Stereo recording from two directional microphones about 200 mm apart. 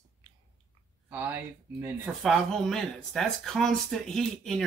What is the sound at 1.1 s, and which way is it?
Speech, 10° right (ahead or behind).